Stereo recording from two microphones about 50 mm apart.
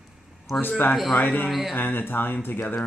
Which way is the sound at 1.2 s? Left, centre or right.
Left.